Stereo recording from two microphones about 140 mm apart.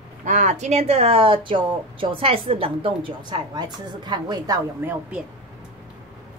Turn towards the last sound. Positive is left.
turn(degrees=-10)  # may be behind; listen again after turning